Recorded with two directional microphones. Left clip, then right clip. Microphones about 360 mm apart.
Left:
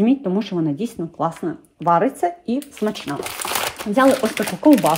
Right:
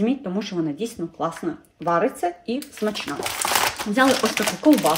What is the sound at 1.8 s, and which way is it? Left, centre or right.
Speech, centre.